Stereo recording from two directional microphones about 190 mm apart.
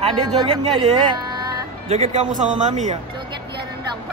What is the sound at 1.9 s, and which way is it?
Speech, 35° right (ahead or behind).